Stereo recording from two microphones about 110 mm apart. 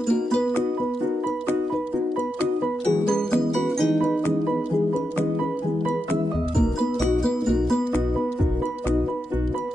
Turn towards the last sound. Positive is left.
turn(degrees=0)  # may be behind; listen again after turning